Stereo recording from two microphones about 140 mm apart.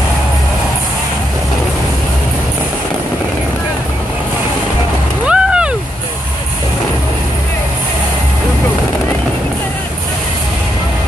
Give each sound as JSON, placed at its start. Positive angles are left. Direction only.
{"t": 5.2, "sound": "vehicle", "side_deg": -5}